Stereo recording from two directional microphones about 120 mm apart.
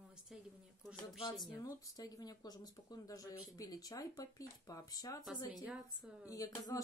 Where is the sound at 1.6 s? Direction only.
30° left (ahead or behind).